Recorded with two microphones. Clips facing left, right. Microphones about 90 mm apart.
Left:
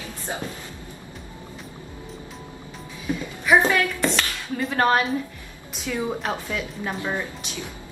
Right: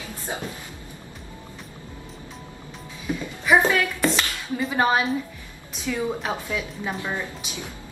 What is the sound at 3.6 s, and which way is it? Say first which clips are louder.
A woman's voice: even; 10° right (ahead or behind).